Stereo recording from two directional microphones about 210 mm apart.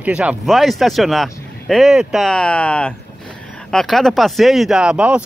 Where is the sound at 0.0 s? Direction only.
5° right (ahead or behind).